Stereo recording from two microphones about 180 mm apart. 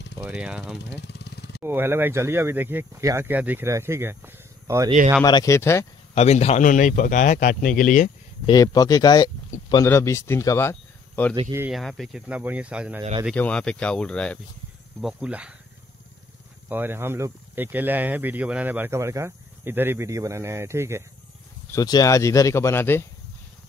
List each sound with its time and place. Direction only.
0.2 s speech: 5° right (ahead or behind)
0.8 s vehicle: 70° left (ahead or behind)
1.6 s speech: 10° right (ahead or behind)
5.2 s speech: 20° left (ahead or behind)
6.1 s speech: 35° left (ahead or behind)
8.5 s speech: 20° left (ahead or behind)
11.7 s speech: centre (ahead or behind)
13.3 s speech: 5° left (ahead or behind)
16.6 s speech: 10° right (ahead or behind)
21.7 s speech: 20° left (ahead or behind)